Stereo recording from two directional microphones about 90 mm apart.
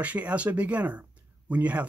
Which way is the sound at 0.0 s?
15° right (ahead or behind).